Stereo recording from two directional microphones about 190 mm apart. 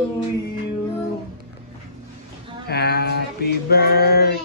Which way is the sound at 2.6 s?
55° left (ahead or behind).